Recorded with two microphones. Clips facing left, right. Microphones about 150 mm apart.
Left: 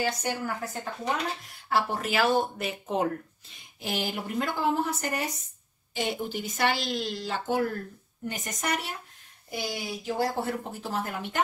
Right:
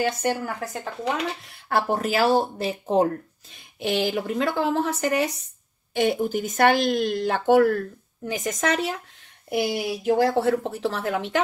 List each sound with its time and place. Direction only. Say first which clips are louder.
0.0 s speech: right 6 dB; 55° right (ahead or behind)
1.7 s speech: right 5 dB; 50° right (ahead or behind); by 3.1 s 35° right (ahead or behind)
3.8 s speech: right 8 dB; 85° right
5.9 s speech: right 8 dB; 50° right (ahead or behind); by 7.8 s 75° right (ahead or behind)
8.3 s speech: right 7 dB; 90° right
9.5 s speech: right 9 dB; 60° right (ahead or behind); by 11.4 s 90° right